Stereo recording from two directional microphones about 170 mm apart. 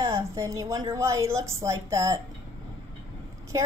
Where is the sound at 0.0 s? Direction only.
15° right (ahead or behind).